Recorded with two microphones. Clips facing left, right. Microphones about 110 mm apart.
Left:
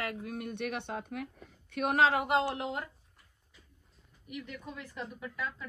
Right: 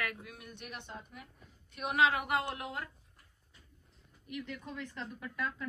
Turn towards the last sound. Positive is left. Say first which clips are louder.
# even
turn(degrees=5)  # may be behind; listen again after turning